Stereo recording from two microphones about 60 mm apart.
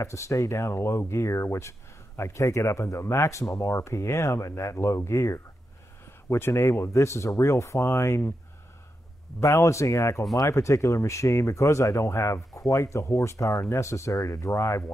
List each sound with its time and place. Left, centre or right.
0.0 s speech: left
6.2 s speech: left
9.4 s speech: left